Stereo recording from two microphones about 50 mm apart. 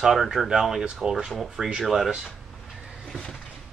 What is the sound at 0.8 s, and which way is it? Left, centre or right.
Speech, centre.